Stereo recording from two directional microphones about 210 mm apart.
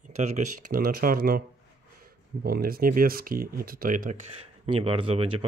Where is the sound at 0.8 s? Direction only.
45° right (ahead or behind).